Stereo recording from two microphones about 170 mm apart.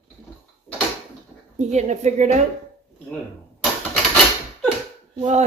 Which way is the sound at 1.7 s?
45° right (ahead or behind).